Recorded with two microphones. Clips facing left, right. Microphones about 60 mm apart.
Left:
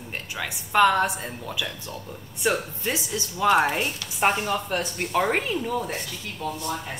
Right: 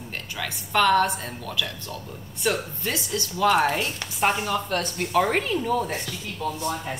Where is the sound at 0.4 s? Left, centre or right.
Centre.